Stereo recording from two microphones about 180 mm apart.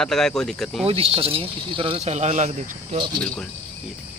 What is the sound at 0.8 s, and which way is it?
Speech, 35° right (ahead or behind).